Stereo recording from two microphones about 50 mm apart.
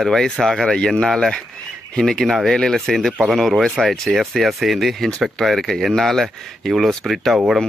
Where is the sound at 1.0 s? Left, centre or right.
Centre.